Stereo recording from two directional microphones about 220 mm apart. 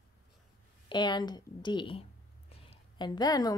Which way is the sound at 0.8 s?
20° left (ahead or behind).